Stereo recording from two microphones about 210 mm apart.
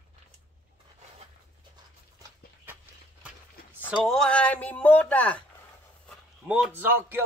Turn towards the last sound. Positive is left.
turn(degrees=-10)  # may be behind; listen again after turning